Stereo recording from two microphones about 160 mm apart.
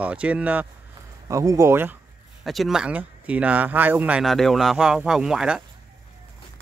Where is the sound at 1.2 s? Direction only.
20° right (ahead or behind).